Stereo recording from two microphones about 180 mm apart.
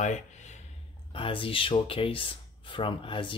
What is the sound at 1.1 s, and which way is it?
Speech, 30° left (ahead or behind).